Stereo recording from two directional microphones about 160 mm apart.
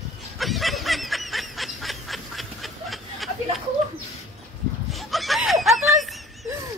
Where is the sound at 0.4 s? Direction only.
Centre (ahead or behind).